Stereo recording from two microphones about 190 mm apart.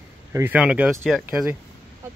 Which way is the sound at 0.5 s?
5° right (ahead or behind).